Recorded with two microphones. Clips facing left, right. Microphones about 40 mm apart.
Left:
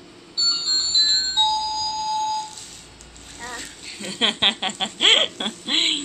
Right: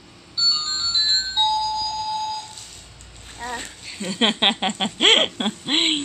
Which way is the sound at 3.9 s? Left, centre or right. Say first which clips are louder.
Right 2 dB; centre.